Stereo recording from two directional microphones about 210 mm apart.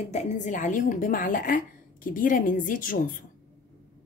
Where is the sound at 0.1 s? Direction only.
35° left (ahead or behind).